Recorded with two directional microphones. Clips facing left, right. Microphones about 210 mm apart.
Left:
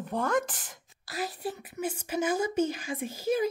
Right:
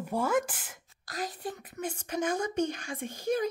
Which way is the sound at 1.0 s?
5° left (ahead or behind).